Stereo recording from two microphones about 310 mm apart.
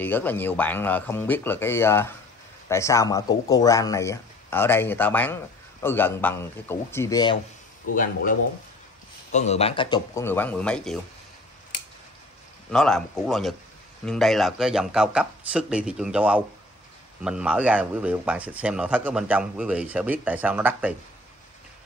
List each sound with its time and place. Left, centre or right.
0.0 s speech: centre
7.9 s speech: left; by 11.0 s centre
12.7 s speech: centre